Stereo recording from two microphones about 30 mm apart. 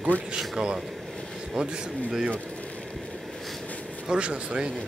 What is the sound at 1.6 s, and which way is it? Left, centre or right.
Speech, right.